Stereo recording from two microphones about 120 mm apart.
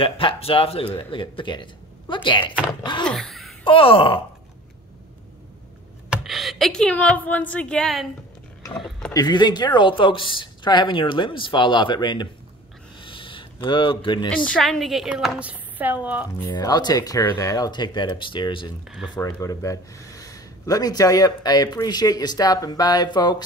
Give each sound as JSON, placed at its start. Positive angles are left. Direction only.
{"t": 0.0, "sound": "a man's voice", "side_deg": 50}
{"t": 3.1, "sound": "a sound", "side_deg": 5}
{"t": 3.6, "sound": "a man's voice", "side_deg": 50}
{"t": 6.2, "sound": "a woman's voice", "side_deg": 0}
{"t": 9.1, "sound": "speech", "side_deg": 35}
{"t": 13.0, "sound": "a sound", "side_deg": 45}
{"t": 14.3, "sound": "speech", "side_deg": 10}
{"t": 16.3, "sound": "speech", "side_deg": 35}
{"t": 19.4, "sound": "speech", "side_deg": 30}